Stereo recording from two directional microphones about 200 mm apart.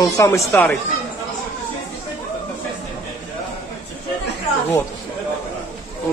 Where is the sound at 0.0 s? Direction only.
15° left (ahead or behind).